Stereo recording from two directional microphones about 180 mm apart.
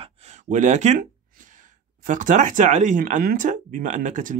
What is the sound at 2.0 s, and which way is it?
Speech, 45° right (ahead or behind).